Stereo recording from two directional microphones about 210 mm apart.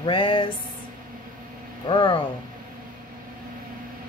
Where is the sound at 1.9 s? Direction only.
20° left (ahead or behind).